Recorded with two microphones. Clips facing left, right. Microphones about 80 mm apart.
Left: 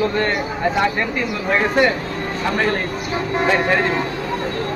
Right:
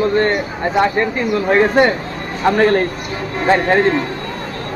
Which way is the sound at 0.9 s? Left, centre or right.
Right.